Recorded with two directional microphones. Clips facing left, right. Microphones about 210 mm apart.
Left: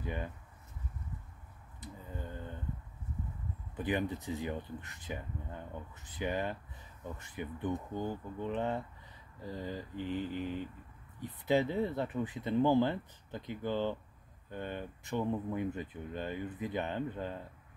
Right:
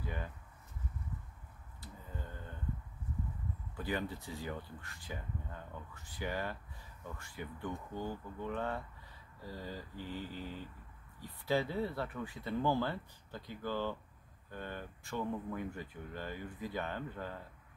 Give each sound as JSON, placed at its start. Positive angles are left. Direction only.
{"t": 0.0, "sound": "speech", "side_deg": 20}
{"t": 3.7, "sound": "speech", "side_deg": 20}